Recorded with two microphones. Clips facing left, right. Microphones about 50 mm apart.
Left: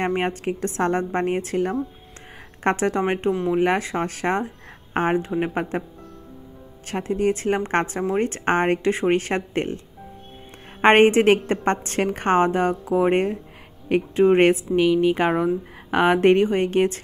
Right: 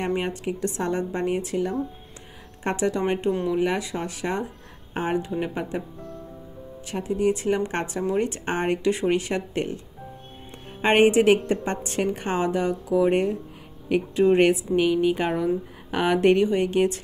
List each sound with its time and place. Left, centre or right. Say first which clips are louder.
0.0 s a woman's voice: left 3 dB; left
6.9 s a woman's voice: left 1 dB; left
10.8 s a woman's voice: left 3 dB; left